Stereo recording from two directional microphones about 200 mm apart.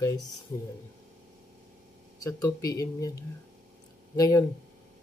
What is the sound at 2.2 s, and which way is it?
Speech, 15° left (ahead or behind).